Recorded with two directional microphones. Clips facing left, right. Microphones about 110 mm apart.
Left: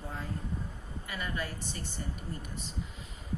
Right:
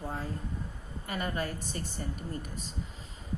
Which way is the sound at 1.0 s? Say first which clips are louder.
Right 4 dB; 40° right (ahead or behind).